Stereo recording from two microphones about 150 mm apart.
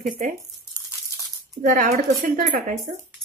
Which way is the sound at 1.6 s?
65° right (ahead or behind).